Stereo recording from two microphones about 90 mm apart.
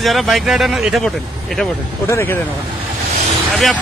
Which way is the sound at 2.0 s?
25° left (ahead or behind).